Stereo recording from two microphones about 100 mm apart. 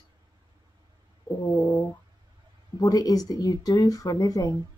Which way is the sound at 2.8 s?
40° left (ahead or behind).